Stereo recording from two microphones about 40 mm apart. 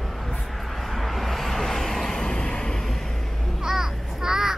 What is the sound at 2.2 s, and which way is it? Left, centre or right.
Vehicle, centre.